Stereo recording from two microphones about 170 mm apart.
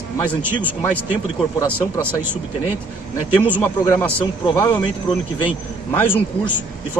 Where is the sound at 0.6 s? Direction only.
10° left (ahead or behind).